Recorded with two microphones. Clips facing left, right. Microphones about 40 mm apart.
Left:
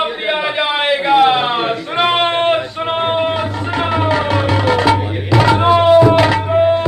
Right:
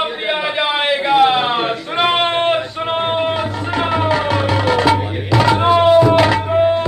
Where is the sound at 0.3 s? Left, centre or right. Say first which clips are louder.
Even; centre.